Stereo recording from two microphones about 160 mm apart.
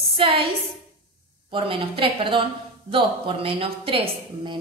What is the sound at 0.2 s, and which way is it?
Speech, 35° right (ahead or behind).